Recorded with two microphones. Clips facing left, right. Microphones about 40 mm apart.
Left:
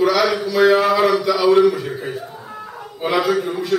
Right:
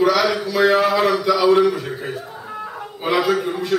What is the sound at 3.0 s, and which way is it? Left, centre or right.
Speech, centre.